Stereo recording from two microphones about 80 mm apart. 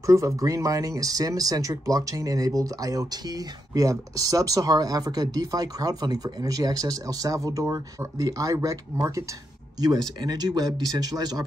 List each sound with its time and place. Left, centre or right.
0.0 s speech: right
9.8 s speech: right